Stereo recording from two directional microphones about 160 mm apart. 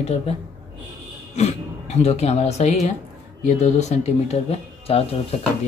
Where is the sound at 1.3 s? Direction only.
45° left (ahead or behind).